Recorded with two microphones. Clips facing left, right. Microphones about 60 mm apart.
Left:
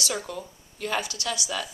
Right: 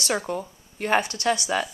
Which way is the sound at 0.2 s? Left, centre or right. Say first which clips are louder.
Right 6 dB; right.